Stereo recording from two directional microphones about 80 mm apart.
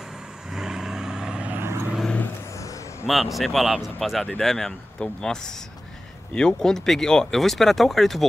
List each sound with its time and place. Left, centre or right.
0.5 s vehicle: centre
1.6 s vehicle: right
3.1 s speech: centre